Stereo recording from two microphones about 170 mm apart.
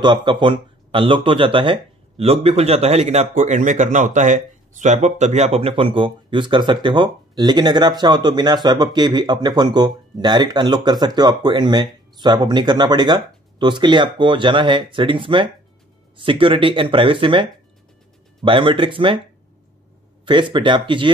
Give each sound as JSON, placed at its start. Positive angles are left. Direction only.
{"t": 0.0, "sound": "speech", "side_deg": -25}
{"t": 20.2, "sound": "speech", "side_deg": -30}